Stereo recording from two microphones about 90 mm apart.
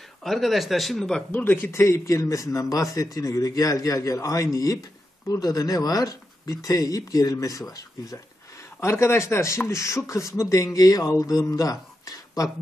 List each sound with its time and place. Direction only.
0.2 s speech: centre (ahead or behind)
1.3 s speech: 25° left (ahead or behind); by 8.2 s 40° left (ahead or behind)
8.8 s speech: 30° left (ahead or behind)